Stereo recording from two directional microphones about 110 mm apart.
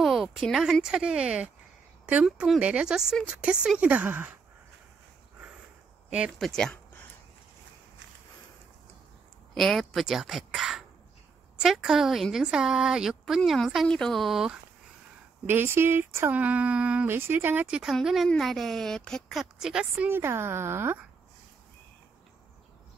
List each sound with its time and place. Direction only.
0.0 s speech: centre (ahead or behind)
6.0 s speech: 10° right (ahead or behind)
6.3 s speech: 5° left (ahead or behind)
9.5 s speech: centre (ahead or behind)
15.4 s speech: 20° right (ahead or behind)
20.1 s speech: 20° right (ahead or behind)